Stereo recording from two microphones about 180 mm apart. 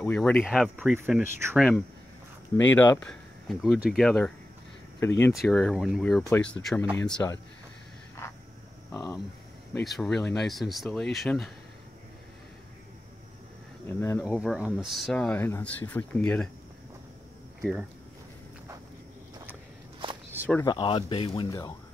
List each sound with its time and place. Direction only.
0.0 s speech: 5° left (ahead or behind)
2.5 s speech: 10° left (ahead or behind)
5.3 s speech: centre (ahead or behind)
8.2 s a sound: 15° left (ahead or behind)
9.8 s speech: centre (ahead or behind)
13.8 s speech: 15° left (ahead or behind)
14.2 s speech: 5° right (ahead or behind)
17.6 s speech: centre (ahead or behind)
20.0 s walk: 30° right (ahead or behind)
20.4 s speech: 10° left (ahead or behind)
20.7 s speech: 30° left (ahead or behind)